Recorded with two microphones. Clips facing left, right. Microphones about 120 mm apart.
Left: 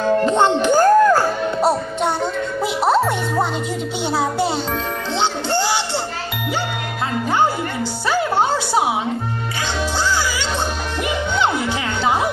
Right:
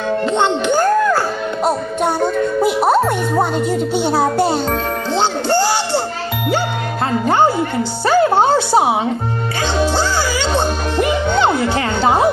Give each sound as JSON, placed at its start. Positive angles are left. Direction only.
{"t": 0.2, "sound": "speech", "side_deg": 40}
{"t": 0.7, "sound": "music", "side_deg": 10}
{"t": 4.2, "sound": "a child's voice", "side_deg": -50}
{"t": 8.1, "sound": "music", "side_deg": -50}
{"t": 11.3, "sound": "music", "side_deg": -55}